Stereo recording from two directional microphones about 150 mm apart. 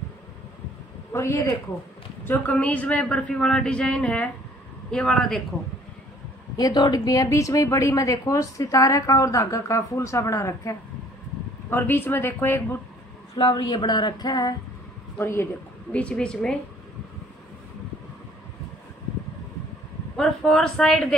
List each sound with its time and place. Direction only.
1.1 s a man's voice: 20° left (ahead or behind)
6.5 s a woman's voice: 25° left (ahead or behind)
13.4 s a woman's voice: 30° left (ahead or behind)
15.1 s a man's voice: 15° left (ahead or behind)
20.2 s a woman's voice: 5° left (ahead or behind)